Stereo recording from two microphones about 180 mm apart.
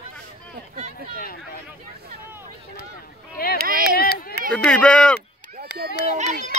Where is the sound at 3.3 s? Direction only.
55° left (ahead or behind).